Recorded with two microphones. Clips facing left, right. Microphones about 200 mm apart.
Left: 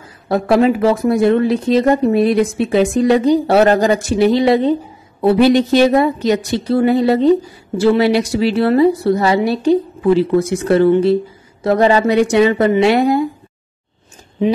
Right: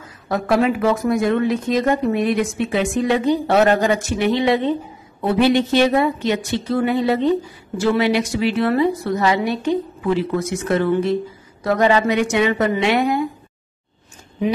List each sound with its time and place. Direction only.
0.3 s a woman's voice: 35° left (ahead or behind)